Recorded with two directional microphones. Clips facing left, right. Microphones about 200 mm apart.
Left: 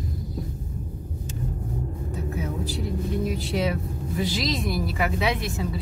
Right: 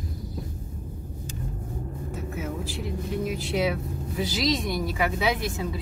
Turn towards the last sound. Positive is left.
turn(degrees=0)  # may be behind; listen again after turning